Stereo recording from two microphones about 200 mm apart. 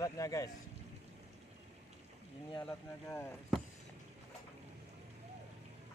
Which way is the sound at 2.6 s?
10° left (ahead or behind).